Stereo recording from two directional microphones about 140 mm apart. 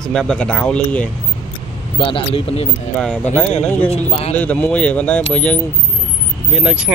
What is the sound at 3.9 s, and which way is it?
Speech, 45° left (ahead or behind).